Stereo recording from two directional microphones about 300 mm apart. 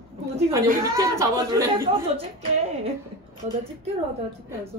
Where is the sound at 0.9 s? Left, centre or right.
Centre.